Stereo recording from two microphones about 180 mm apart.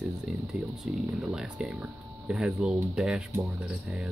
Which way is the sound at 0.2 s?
Centre (ahead or behind).